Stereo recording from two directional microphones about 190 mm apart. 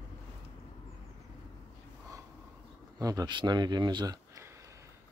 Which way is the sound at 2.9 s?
20° right (ahead or behind).